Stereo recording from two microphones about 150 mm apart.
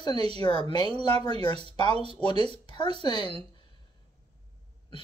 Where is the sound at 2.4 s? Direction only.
30° left (ahead or behind).